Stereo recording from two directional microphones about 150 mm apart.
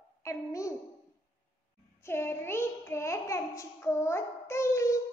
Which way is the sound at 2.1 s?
15° left (ahead or behind).